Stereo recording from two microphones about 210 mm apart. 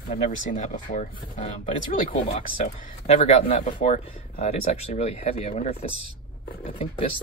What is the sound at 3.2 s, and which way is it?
Speech, 30° left (ahead or behind).